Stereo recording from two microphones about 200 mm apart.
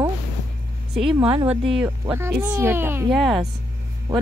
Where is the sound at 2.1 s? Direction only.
15° right (ahead or behind).